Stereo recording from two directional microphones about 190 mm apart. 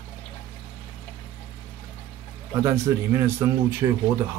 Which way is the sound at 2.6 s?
15° right (ahead or behind).